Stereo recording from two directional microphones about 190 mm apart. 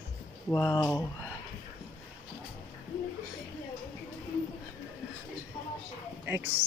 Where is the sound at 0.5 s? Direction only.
20° left (ahead or behind).